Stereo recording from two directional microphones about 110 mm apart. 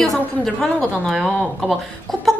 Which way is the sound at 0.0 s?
5° left (ahead or behind).